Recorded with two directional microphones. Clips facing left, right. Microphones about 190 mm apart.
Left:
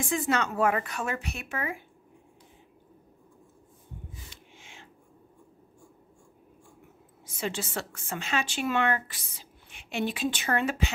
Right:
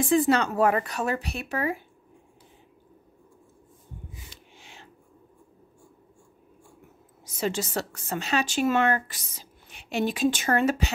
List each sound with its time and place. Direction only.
0.0 s a woman's voice: 35° right (ahead or behind)
4.6 s a sound: 35° right (ahead or behind)
7.2 s a woman's voice: 40° right (ahead or behind)